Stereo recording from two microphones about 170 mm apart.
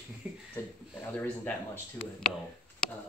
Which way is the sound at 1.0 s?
10° left (ahead or behind).